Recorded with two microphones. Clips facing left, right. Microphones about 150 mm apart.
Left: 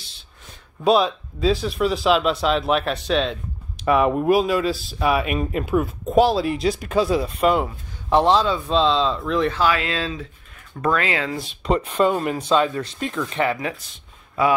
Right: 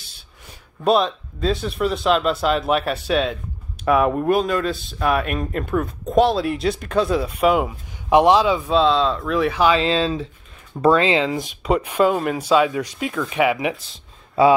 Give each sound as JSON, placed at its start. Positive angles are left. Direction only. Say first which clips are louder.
{"t": 0.8, "sound": "speech", "louder": "even", "side_deg": 0}
{"t": 7.2, "sound": "speech", "louder": "right 1 dB", "side_deg": -10}
{"t": 8.7, "sound": "speech", "louder": "right 1 dB", "side_deg": 0}
{"t": 9.6, "sound": "speech", "louder": "right 4 dB", "side_deg": -25}
{"t": 11.6, "sound": "speech", "louder": "right 1 dB", "side_deg": -10}